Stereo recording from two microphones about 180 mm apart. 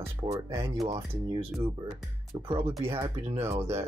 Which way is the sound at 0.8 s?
20° right (ahead or behind).